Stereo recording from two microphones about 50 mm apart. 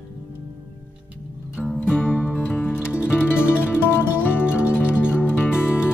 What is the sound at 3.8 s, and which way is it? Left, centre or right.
Music, left.